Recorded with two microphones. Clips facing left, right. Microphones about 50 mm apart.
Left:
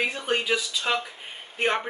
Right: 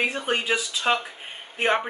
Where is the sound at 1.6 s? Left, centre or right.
Centre.